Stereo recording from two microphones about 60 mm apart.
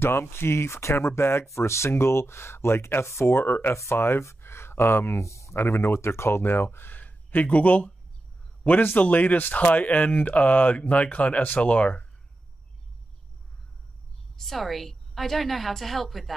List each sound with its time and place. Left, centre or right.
0.0 s speech: left
3.7 s speech: left
5.2 s speech: left
5.6 s speech: left
9.0 s speech: left
14.3 s a woman's voice: centre